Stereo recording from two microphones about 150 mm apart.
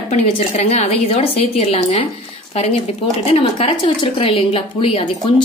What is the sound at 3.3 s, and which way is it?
Speech, 35° left (ahead or behind).